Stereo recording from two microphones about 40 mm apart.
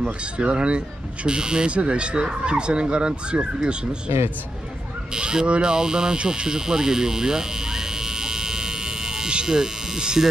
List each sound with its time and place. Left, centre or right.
0.0 s speech: right
5.1 s speech: centre